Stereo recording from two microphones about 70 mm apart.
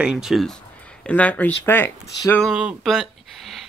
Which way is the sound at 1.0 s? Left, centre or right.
Left.